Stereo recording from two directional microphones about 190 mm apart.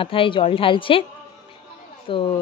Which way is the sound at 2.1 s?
25° left (ahead or behind).